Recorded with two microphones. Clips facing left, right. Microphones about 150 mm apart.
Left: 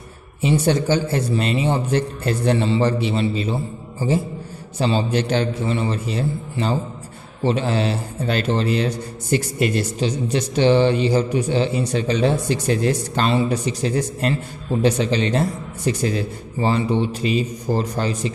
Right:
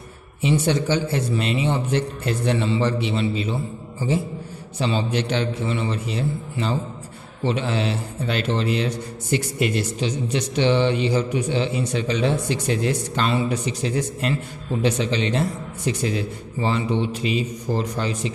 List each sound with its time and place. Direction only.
0.4 s a man's voice: 40° left (ahead or behind)
4.7 s a man's voice: 40° left (ahead or behind)